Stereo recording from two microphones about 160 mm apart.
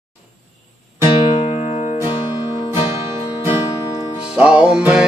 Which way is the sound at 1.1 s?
35° left (ahead or behind).